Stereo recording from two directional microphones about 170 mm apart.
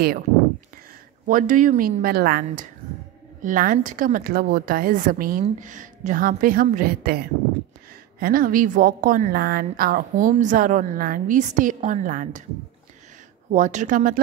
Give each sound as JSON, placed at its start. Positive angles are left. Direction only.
{"t": 1.2, "sound": "a woman's voice", "side_deg": -50}
{"t": 3.4, "sound": "a woman's voice", "side_deg": -50}
{"t": 13.5, "sound": "a woman's voice", "side_deg": -45}